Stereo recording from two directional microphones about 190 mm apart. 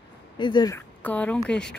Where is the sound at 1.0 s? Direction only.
5° left (ahead or behind).